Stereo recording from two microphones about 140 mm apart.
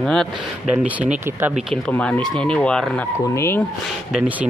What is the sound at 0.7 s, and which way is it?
Speech, 10° right (ahead or behind).